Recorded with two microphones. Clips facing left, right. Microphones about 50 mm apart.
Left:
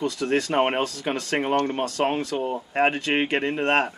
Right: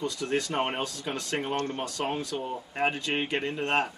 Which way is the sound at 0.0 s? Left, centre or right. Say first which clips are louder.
Left 5 dB; left.